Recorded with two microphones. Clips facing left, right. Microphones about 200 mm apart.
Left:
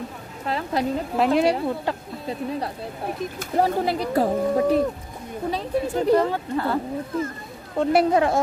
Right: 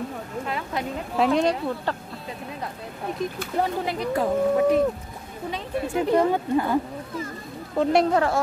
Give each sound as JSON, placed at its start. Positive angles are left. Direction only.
{"t": 0.5, "sound": "a sound", "side_deg": 35}
{"t": 1.1, "sound": "speech", "side_deg": 5}
{"t": 3.3, "sound": "speech", "side_deg": 35}
{"t": 6.1, "sound": "speech", "side_deg": -15}
{"t": 7.7, "sound": "speech", "side_deg": 0}
{"t": 8.1, "sound": "a woman's voice", "side_deg": 20}